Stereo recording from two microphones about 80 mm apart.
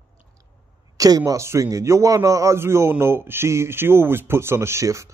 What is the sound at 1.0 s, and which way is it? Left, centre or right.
Speech, right.